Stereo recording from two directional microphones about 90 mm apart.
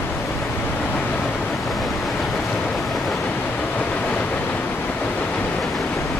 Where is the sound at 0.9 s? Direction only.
15° left (ahead or behind).